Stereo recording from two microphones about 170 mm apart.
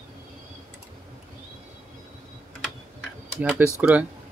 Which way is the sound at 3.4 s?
5° right (ahead or behind).